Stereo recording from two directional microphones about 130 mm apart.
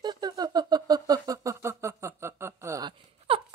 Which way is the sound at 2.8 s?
45° right (ahead or behind).